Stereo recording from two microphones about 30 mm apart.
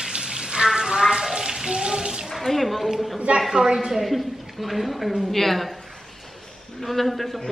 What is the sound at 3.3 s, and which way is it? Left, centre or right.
Speech, centre.